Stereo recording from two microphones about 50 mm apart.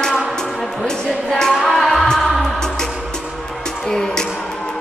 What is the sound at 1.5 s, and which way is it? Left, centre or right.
Music, centre.